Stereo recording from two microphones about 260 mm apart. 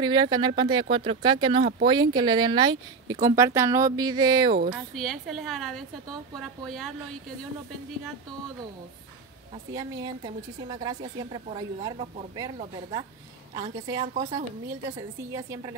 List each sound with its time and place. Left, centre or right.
0.0 s a woman's voice: centre
4.7 s a woman's voice: centre
9.7 s a woman's voice: centre